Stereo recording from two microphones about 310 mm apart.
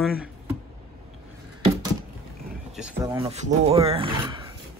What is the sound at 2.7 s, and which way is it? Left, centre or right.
Speech, centre.